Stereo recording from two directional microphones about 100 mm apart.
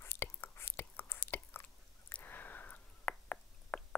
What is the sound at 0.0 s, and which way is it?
Whispering, 20° left (ahead or behind).